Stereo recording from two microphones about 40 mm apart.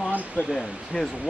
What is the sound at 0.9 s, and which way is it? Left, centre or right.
Speech, left.